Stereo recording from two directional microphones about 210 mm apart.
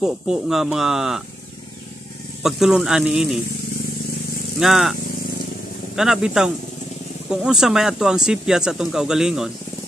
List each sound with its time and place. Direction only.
0.0 s speech: centre (ahead or behind)
2.4 s speech: centre (ahead or behind)
4.6 s speech: centre (ahead or behind)
5.9 s speech: centre (ahead or behind)